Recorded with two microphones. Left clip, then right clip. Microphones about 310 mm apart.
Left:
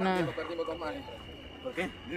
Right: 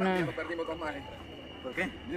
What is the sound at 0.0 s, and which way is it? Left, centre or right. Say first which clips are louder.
Speech: even; centre.